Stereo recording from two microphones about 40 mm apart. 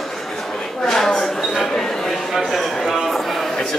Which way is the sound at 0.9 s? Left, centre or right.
Centre.